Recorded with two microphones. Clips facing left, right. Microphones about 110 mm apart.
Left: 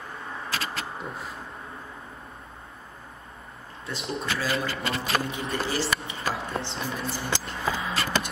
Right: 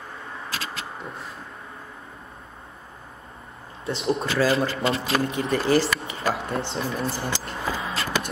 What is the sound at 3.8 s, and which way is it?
Speech, 30° right (ahead or behind).